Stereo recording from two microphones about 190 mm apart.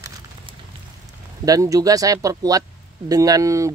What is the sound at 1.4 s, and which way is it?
Speech, 20° right (ahead or behind).